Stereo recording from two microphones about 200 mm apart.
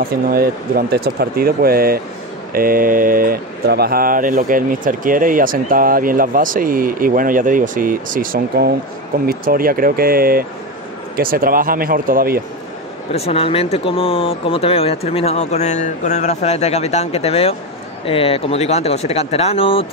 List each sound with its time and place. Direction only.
0.0 s speech: 50° right (ahead or behind)
13.1 s speech: 30° left (ahead or behind)